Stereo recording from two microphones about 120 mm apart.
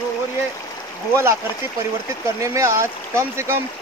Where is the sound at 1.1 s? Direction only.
20° right (ahead or behind).